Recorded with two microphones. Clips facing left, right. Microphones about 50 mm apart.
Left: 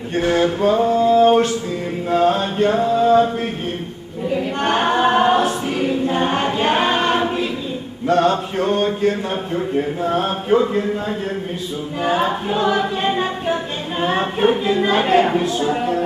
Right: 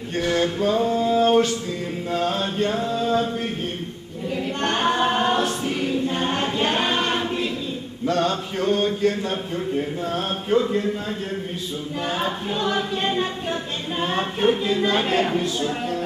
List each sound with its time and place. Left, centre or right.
0.2 s a sound: left
2.0 s male singing: centre
4.3 s choir: centre
8.1 s mantra: left
8.7 s choir: centre
12.0 s choir: centre